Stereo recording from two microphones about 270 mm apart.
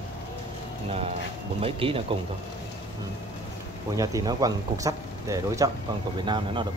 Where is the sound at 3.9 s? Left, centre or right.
Centre.